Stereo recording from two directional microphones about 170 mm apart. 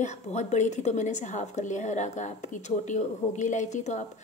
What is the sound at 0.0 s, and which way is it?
A woman's voice, 40° left (ahead or behind).